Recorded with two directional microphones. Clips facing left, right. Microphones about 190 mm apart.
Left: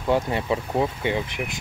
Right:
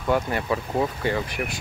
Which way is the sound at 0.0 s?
25° left (ahead or behind).